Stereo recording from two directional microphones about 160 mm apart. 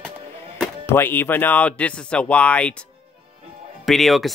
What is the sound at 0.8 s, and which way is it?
Speech, 15° left (ahead or behind).